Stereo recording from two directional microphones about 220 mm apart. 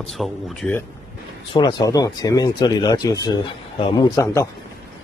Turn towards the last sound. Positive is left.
turn(degrees=15)  # may be behind; listen again after turning